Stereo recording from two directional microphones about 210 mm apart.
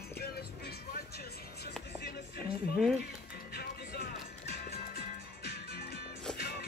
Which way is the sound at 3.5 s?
50° left (ahead or behind).